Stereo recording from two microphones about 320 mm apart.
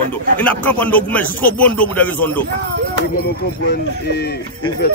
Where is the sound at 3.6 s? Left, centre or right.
Left.